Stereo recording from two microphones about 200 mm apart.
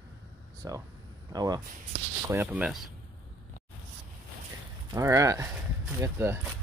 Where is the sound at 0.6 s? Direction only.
15° right (ahead or behind).